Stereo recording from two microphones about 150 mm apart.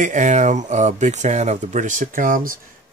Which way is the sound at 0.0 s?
55° right (ahead or behind).